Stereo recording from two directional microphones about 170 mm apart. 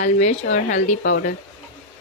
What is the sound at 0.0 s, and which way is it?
Speech, 45° left (ahead or behind).